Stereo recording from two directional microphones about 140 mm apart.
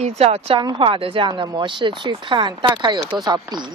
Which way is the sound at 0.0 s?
50° right (ahead or behind).